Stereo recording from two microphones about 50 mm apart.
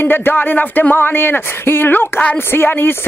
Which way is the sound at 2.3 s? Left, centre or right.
Left.